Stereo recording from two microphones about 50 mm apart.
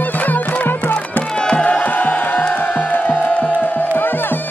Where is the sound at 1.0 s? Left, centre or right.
Left.